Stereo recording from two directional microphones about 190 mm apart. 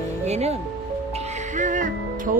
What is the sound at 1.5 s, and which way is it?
Music, 40° right (ahead or behind).